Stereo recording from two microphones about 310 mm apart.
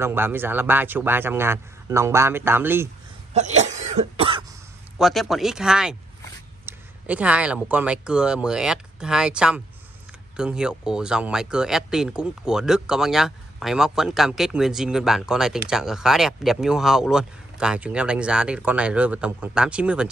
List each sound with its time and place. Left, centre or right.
0.0 s a man's voice: centre
3.3 s cough: right
4.9 s speech: centre